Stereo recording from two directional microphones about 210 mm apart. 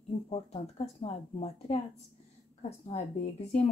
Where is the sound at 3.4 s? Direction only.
30° left (ahead or behind).